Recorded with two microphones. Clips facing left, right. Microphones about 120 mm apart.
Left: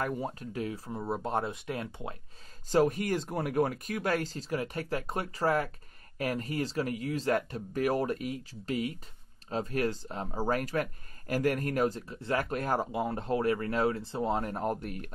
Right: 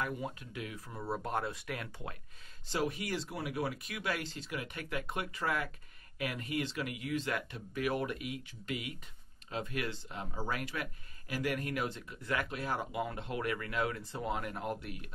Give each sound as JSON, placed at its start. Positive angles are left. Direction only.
{"t": 0.0, "sound": "speech", "side_deg": 40}
{"t": 2.7, "sound": "speech", "side_deg": 45}
{"t": 12.4, "sound": "speech", "side_deg": 45}
{"t": 12.9, "sound": "speech", "side_deg": 35}